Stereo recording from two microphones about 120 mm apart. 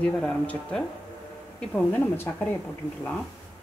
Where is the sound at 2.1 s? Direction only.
20° left (ahead or behind).